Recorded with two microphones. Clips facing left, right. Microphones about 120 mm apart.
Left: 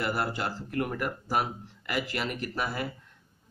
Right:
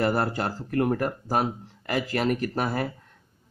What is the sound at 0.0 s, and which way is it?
Speech, 40° right (ahead or behind).